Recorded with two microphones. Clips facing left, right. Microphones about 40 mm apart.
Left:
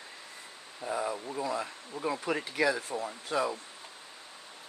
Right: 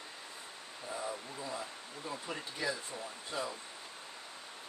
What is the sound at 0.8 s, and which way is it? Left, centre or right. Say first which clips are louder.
Speech: left 8 dB; left.